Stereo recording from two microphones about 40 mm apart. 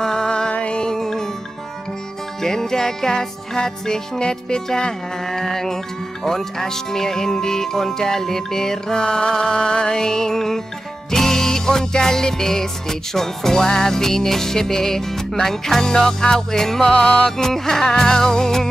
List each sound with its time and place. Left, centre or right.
0.0 s music: centre
0.5 s music: left
0.9 s music: centre
2.4 s music: centre
6.2 s speech: centre
11.1 s music: centre
13.7 s speech: centre
17.0 s music: left
17.4 s speech: centre